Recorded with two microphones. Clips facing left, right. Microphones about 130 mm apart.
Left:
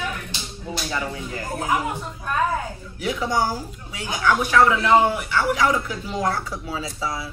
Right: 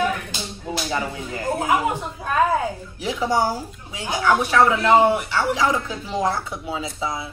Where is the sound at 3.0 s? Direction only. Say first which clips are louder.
Right 2 dB; 25° right (ahead or behind).